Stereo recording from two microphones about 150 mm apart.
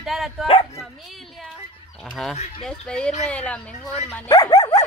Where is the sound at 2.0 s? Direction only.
5° left (ahead or behind).